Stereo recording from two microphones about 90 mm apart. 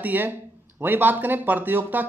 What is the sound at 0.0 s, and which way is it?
Speech, 20° right (ahead or behind).